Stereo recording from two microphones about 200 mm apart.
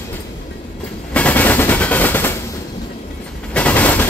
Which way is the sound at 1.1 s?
5° left (ahead or behind).